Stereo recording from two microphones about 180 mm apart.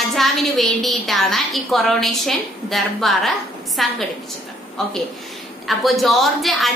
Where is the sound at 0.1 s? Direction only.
Centre (ahead or behind).